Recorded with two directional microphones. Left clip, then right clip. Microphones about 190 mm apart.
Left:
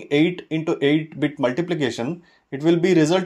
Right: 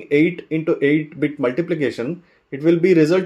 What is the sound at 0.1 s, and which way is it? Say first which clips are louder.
Speech: right 3 dB; 20° left (ahead or behind).